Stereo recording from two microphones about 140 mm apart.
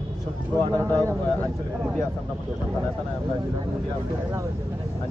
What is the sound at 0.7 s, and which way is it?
Speech, 25° right (ahead or behind).